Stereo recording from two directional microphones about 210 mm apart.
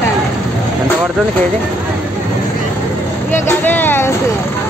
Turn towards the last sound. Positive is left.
turn(degrees=10)  # may be behind; listen again after turning